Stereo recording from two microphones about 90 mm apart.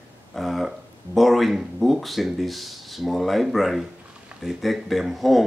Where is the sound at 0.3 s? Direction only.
Centre (ahead or behind).